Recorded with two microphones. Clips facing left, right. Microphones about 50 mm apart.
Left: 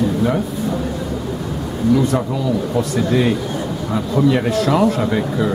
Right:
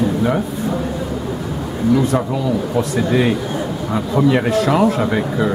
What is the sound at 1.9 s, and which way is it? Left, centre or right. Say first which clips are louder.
Speech: right 1 dB; centre.